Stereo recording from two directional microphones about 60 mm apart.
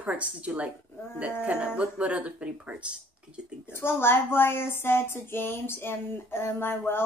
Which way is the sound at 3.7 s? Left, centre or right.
Left.